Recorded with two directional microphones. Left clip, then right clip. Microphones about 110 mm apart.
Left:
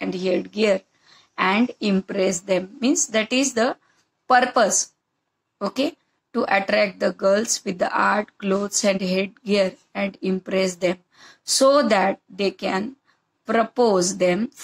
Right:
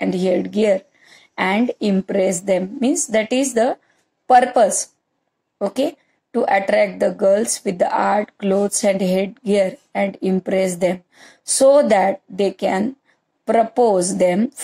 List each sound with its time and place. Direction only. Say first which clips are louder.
0.0 s a woman's voice: right 5 dB; 40° right (ahead or behind)